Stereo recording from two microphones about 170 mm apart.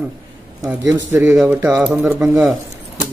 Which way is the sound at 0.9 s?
15° right (ahead or behind).